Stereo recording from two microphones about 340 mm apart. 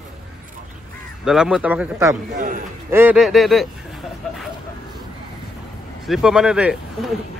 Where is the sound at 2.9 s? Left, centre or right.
Centre.